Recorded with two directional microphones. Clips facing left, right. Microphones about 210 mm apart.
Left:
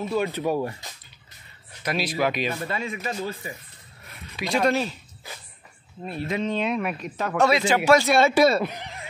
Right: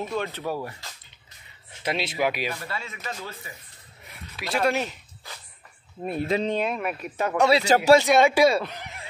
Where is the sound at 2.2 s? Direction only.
10° right (ahead or behind).